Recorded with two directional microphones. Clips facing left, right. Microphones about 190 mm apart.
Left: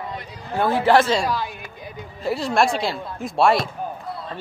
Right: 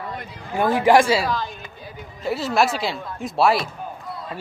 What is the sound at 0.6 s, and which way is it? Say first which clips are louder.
Speech: right 1 dB; 15° right (ahead or behind).